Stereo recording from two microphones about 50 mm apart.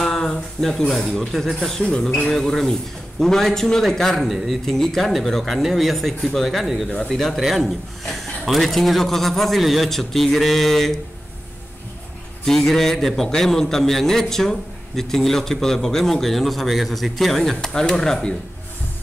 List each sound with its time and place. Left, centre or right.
0.0 s a man's voice: centre
1.8 s a sound: centre
2.3 s a man's voice: centre
4.3 s speech: centre
12.4 s a man's voice: centre